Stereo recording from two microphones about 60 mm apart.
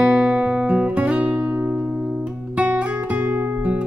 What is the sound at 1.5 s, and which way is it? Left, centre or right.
Music, right.